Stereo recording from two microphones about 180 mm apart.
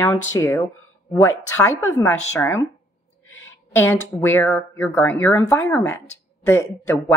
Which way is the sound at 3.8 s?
10° left (ahead or behind).